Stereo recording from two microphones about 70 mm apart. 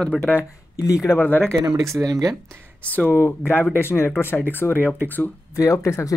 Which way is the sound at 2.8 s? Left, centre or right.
Centre.